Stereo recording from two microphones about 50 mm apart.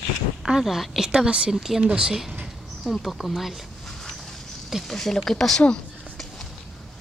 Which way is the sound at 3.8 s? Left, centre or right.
Centre.